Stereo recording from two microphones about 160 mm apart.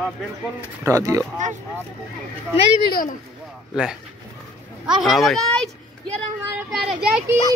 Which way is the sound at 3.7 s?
Centre (ahead or behind).